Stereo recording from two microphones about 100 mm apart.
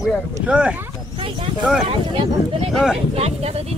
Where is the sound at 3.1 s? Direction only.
90° right.